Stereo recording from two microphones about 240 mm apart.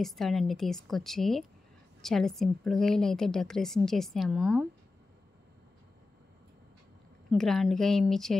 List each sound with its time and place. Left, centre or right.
0.0 s a woman's voice: centre
7.2 s a woman's voice: centre